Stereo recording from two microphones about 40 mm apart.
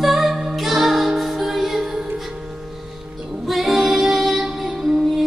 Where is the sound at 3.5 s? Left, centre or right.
Centre.